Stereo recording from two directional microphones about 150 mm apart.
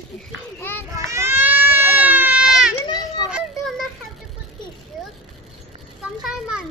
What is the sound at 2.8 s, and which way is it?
Children playing, 30° left (ahead or behind).